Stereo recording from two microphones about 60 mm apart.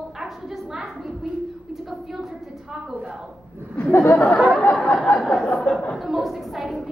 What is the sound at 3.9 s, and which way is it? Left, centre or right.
Speech, left.